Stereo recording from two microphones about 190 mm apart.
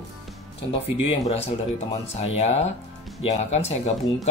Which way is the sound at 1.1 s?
35° left (ahead or behind).